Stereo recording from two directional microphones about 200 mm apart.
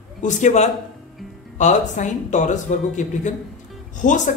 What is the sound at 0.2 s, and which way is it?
A man's voice, 35° left (ahead or behind).